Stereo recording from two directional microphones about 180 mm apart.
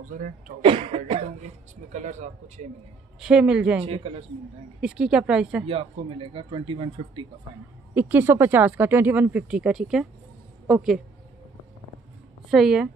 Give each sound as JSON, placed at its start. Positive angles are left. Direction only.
{"t": 0.6, "sound": "a man's voice", "side_deg": -30}
{"t": 1.9, "sound": "a man's voice", "side_deg": -40}
{"t": 3.2, "sound": "speech", "side_deg": -5}
{"t": 3.8, "sound": "a man's voice", "side_deg": -30}
{"t": 4.8, "sound": "speech", "side_deg": -5}
{"t": 5.7, "sound": "a man's voice", "side_deg": -30}
{"t": 7.9, "sound": "speech", "side_deg": -10}
{"t": 12.4, "sound": "speech", "side_deg": 0}